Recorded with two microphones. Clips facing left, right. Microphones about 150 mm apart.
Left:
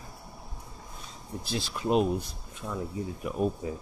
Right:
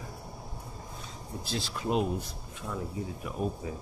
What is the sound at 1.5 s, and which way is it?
Speech, 20° left (ahead or behind).